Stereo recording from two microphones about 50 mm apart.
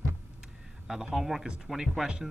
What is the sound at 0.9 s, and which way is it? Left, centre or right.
Speech, centre.